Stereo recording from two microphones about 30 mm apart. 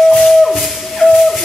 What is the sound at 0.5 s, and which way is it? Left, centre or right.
Music, centre.